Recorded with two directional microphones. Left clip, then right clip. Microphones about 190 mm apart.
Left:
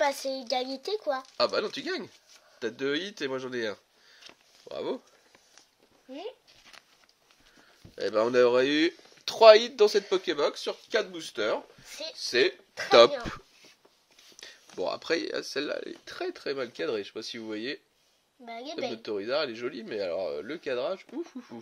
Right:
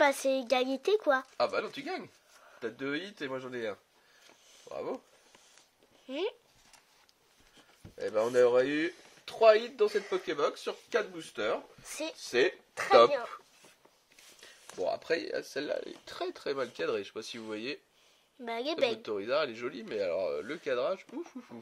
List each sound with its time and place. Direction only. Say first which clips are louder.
0.0 s speech: right 1 dB; 20° right (ahead or behind)
1.3 s speech: left 4 dB; 50° left (ahead or behind)
8.0 s speech: left 3 dB; 55° left (ahead or behind)
14.8 s speech: left 2 dB; 35° left (ahead or behind); by 17.7 s 15° left (ahead or behind)
18.4 s a woman's voice: right 4 dB; 65° right (ahead or behind)
19.0 s speech: left 2 dB; 15° left (ahead or behind)